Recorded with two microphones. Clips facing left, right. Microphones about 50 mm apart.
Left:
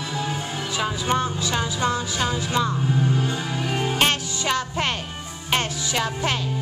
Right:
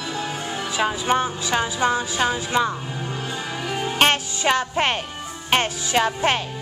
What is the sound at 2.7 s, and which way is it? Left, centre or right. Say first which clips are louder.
Music: left 6 dB; centre.